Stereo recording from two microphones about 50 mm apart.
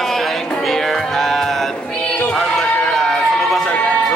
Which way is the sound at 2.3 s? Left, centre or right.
Centre.